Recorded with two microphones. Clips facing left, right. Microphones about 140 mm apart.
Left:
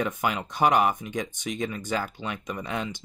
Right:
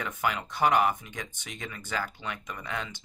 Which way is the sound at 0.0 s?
20° left (ahead or behind).